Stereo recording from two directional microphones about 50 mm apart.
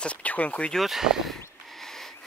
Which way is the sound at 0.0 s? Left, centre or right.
Left.